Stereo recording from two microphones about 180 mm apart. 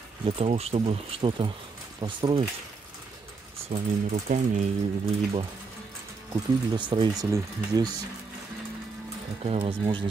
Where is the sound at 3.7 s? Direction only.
40° right (ahead or behind).